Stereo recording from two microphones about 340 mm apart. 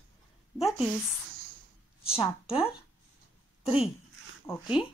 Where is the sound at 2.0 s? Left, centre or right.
Centre.